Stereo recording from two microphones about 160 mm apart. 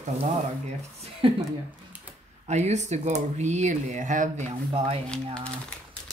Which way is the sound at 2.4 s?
45° right (ahead or behind).